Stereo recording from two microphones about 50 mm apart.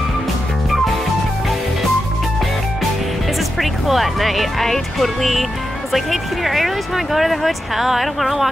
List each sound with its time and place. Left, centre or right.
3.5 s speech: centre